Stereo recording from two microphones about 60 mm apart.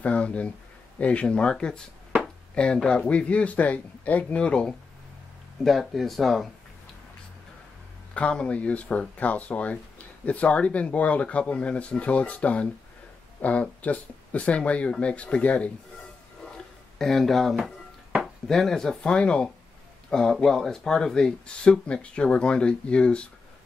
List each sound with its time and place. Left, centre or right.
0.0 s speech: left
5.6 s speech: centre
8.1 s speech: centre
16.5 s a sound: centre
18.2 s speech: centre